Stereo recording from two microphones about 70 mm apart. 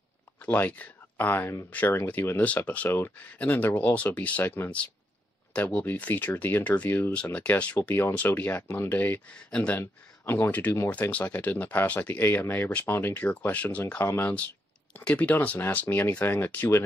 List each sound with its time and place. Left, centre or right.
0.5 s speech: left
9.8 s speech: left
14.0 s speech: left
15.0 s speech: centre